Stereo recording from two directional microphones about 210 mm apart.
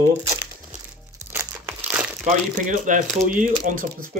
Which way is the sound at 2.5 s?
35° right (ahead or behind).